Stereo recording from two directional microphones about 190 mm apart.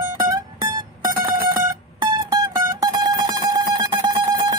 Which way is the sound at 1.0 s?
15° right (ahead or behind).